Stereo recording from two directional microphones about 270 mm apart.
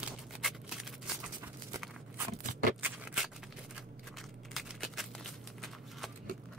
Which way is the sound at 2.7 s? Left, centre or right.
Centre.